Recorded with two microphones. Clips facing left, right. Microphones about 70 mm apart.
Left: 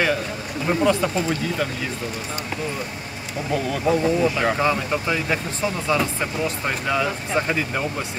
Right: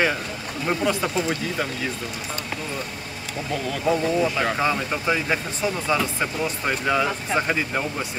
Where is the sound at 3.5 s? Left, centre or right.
Centre.